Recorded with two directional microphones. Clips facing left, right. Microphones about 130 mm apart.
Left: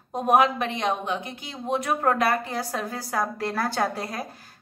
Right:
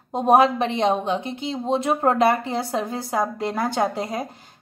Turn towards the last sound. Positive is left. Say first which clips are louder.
# right 4 dB
turn(degrees=-20)  # may be behind; listen again after turning